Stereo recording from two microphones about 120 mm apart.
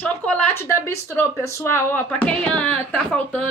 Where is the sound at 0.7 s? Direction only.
25° left (ahead or behind).